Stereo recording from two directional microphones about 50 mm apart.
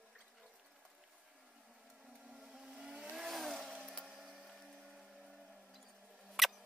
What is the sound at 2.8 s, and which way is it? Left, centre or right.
Vehicle, centre.